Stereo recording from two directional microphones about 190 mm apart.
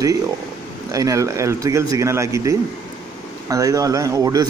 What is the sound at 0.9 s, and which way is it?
A man's voice, 15° right (ahead or behind).